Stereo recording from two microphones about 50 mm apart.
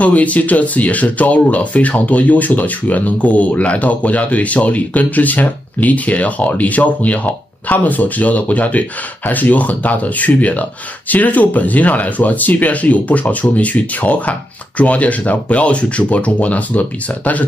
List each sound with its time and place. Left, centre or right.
0.0 s speech: left